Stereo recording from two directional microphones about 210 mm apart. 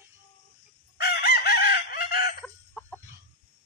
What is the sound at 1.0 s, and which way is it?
Chicken, 50° left (ahead or behind).